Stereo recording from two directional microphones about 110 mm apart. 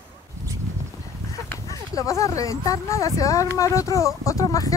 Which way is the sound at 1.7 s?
30° left (ahead or behind).